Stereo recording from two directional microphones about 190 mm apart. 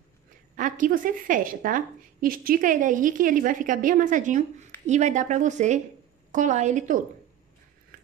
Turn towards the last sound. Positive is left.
turn(degrees=-40)  # may be behind; listen again after turning